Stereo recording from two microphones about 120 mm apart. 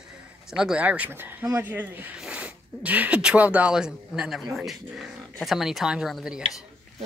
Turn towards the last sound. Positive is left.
turn(degrees=-5)  # may be behind; listen again after turning